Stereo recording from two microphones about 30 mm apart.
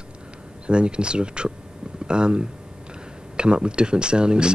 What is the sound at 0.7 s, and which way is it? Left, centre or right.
Speech, right.